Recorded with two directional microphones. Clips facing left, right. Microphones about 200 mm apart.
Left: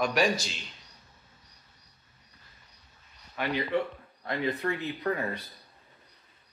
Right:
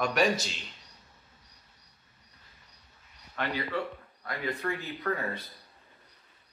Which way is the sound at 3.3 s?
15° left (ahead or behind).